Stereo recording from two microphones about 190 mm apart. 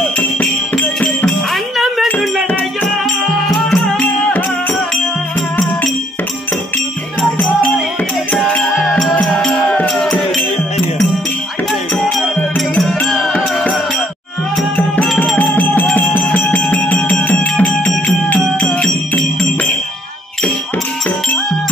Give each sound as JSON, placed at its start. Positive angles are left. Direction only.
{"t": 0.4, "sound": "music", "side_deg": 5}
{"t": 3.4, "sound": "music", "side_deg": 5}
{"t": 7.2, "sound": "music", "side_deg": 5}
{"t": 11.9, "sound": "music", "side_deg": 0}
{"t": 14.8, "sound": "music", "side_deg": 10}